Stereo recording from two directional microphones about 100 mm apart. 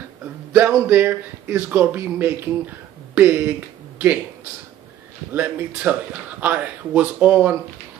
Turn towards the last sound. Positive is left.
turn(degrees=-20)  # may be behind; listen again after turning